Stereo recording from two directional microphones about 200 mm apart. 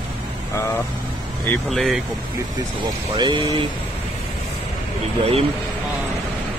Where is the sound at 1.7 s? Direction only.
Centre (ahead or behind).